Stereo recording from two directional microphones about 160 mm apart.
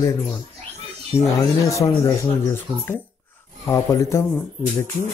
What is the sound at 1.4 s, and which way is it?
Speech, 20° left (ahead or behind).